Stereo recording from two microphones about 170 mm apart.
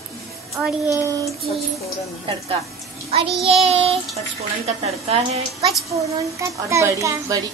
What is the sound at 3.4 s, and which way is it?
A child's voice, 35° right (ahead or behind).